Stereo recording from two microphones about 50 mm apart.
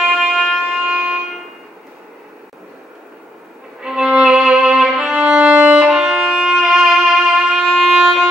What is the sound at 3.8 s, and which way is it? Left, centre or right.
Violin, centre.